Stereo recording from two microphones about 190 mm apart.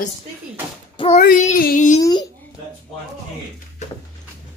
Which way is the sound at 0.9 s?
30° left (ahead or behind).